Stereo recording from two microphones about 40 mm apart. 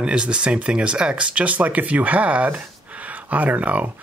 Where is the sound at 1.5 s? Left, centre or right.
Right.